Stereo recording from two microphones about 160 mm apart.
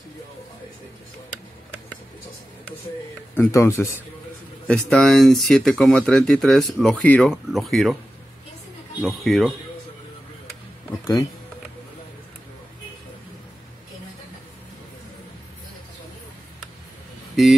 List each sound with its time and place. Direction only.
3.3 s speech: 20° left (ahead or behind)
4.6 s speech: 5° left (ahead or behind)
9.0 s speech: centre (ahead or behind)